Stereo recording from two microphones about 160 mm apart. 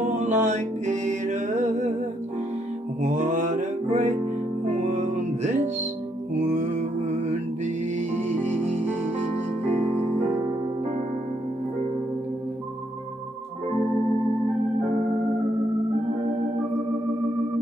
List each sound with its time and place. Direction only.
0.2 s music: 50° right (ahead or behind)
3.0 s mantra: 50° right (ahead or behind)
4.7 s music: 50° right (ahead or behind)